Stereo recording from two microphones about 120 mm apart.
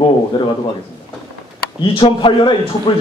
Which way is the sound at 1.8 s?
45° left (ahead or behind).